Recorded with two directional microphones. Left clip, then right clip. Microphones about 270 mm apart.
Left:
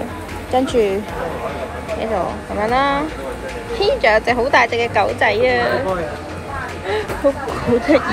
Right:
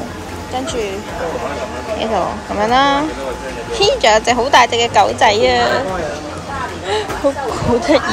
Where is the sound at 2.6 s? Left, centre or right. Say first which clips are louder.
Right 4 dB; centre.